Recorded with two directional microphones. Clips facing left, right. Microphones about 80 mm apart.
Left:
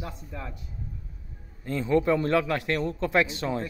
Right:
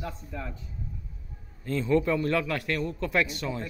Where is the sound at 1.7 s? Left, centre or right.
Centre.